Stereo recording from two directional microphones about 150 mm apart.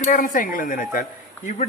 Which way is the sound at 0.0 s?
65° left (ahead or behind).